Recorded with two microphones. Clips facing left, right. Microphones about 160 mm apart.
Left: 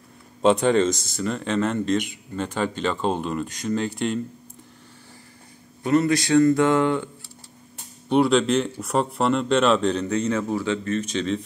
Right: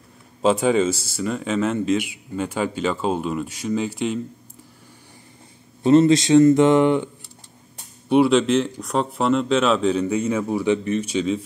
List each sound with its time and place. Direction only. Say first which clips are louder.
0.4 s a man's voice: even; centre (ahead or behind)
5.8 s speech: right 6 dB; 25° right (ahead or behind)
8.1 s a man's voice: right 2 dB; 5° right (ahead or behind)